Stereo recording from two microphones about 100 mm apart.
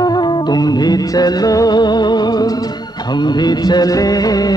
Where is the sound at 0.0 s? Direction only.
45° left (ahead or behind).